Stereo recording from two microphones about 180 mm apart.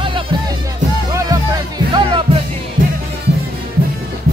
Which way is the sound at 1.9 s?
30° right (ahead or behind).